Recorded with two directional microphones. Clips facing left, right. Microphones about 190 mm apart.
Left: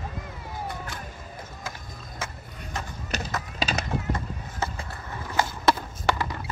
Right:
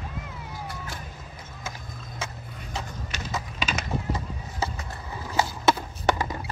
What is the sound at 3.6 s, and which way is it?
Horse, 35° left (ahead or behind).